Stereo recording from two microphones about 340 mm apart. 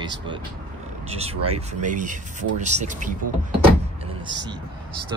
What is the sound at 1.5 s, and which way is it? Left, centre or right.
Speech, right.